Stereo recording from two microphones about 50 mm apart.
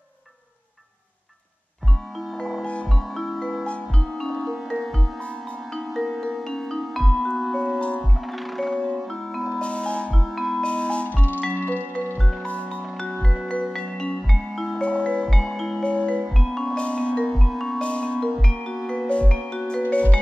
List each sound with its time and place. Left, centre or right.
2.6 s music: left
3.2 s music: centre
4.5 s music: centre
7.5 s music: left
9.5 s marimba: left
10.1 s marimba: centre
10.6 s music: left
11.1 s music: left; by 14.8 s centre
14.8 s music: left
15.4 s music: centre
15.8 s music: left
17.3 s music: centre
17.7 s music: left